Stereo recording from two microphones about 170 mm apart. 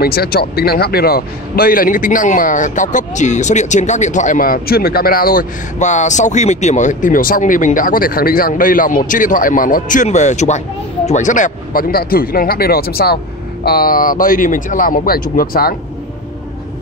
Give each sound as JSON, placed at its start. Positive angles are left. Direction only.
{"t": 0.0, "sound": "speech", "side_deg": 65}